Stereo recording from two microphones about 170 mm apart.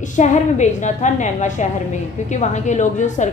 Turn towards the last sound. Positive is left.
turn(degrees=45)  # may be behind; listen again after turning